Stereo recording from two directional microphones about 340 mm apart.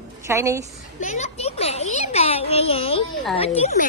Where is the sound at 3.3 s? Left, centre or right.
Centre.